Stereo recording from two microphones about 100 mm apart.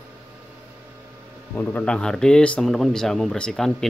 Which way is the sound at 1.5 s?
15° left (ahead or behind).